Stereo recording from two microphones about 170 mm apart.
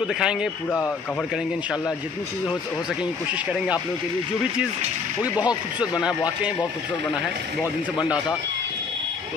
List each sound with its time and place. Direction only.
0.0 s a man's voice: 5° right (ahead or behind)
0.7 s speech: 10° left (ahead or behind)
5.3 s speech: 25° left (ahead or behind)
5.8 s speech: 5° right (ahead or behind)